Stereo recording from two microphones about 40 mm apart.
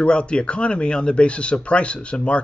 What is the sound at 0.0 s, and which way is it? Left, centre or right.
Speech, left.